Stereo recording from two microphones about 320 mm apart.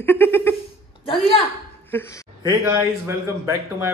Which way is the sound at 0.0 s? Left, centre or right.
Centre.